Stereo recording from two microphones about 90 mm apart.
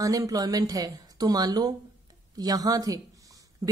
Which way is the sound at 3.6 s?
40° right (ahead or behind).